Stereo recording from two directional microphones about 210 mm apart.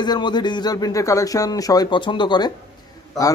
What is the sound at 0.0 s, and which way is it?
A man's voice, 20° left (ahead or behind).